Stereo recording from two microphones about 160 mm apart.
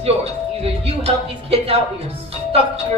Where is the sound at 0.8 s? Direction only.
40° right (ahead or behind).